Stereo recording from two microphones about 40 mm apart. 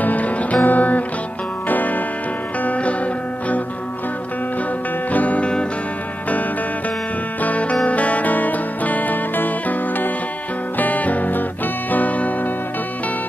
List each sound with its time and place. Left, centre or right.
0.0 s music: left
2.6 s music: left
5.1 s music: left
7.4 s music: left